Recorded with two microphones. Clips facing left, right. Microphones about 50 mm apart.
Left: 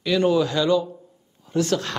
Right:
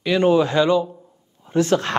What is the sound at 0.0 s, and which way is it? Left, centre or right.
A man's voice, right.